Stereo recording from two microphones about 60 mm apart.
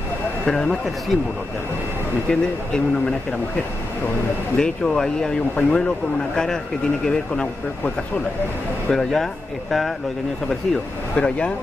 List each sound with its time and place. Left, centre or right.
0.5 s speech: centre
2.2 s speech: centre
4.6 s speech: centre
8.9 s speech: centre
10.7 s speech: centre